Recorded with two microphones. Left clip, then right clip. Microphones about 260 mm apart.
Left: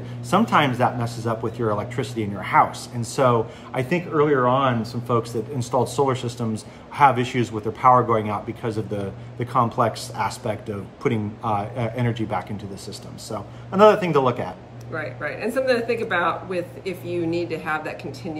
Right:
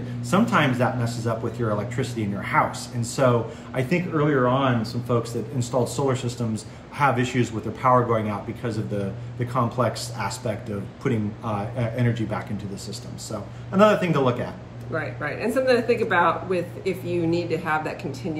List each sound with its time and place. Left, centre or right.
0.3 s speech: centre
14.9 s speech: centre